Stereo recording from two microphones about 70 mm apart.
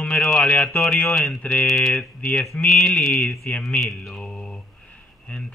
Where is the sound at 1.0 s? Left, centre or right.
Centre.